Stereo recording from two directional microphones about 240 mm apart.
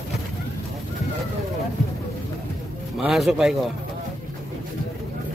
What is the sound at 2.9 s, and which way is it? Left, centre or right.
Speech, centre.